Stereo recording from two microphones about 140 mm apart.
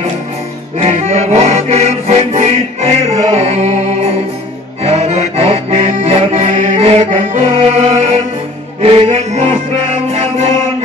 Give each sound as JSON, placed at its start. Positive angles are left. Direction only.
{"t": 0.7, "sound": "music", "side_deg": -50}